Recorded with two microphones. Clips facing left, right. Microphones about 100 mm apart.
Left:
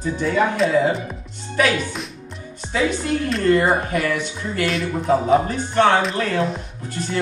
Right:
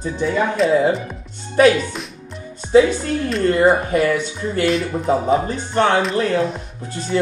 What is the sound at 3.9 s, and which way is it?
Speech, 35° right (ahead or behind).